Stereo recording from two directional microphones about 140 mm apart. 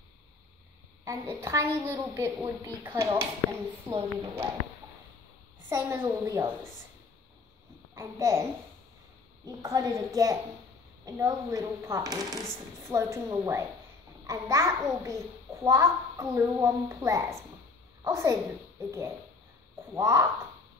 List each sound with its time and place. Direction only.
1.0 s a child's voice: 20° right (ahead or behind)
5.7 s a child's voice: 15° right (ahead or behind)
7.9 s a child's voice: 20° right (ahead or behind)